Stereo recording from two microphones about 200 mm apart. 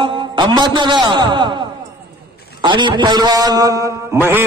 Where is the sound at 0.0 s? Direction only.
25° right (ahead or behind).